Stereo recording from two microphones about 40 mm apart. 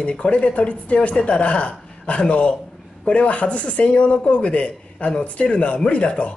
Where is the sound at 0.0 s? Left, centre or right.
Left.